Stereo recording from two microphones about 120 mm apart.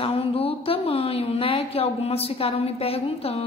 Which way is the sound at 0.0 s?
50° left (ahead or behind).